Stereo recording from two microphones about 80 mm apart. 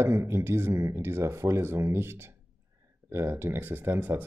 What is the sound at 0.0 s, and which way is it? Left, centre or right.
Speech, right.